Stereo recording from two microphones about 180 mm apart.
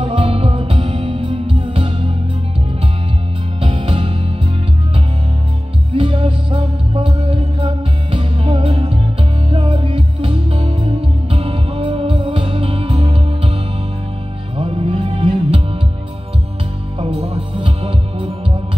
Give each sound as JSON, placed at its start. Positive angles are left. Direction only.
{"t": 0.0, "sound": "music", "side_deg": -30}
{"t": 3.6, "sound": "music", "side_deg": -30}
{"t": 5.9, "sound": "music", "side_deg": -30}
{"t": 14.6, "sound": "music", "side_deg": -30}
{"t": 17.0, "sound": "music", "side_deg": -35}